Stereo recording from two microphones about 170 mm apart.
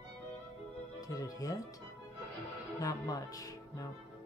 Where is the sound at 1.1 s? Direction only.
20° left (ahead or behind).